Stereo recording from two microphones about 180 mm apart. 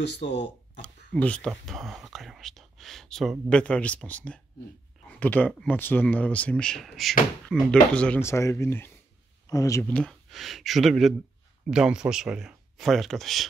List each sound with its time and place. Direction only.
0.0 s speech: 75° left (ahead or behind)
0.8 s speech: 5° left (ahead or behind)